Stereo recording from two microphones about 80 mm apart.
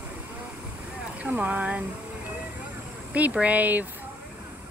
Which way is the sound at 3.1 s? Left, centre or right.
Centre.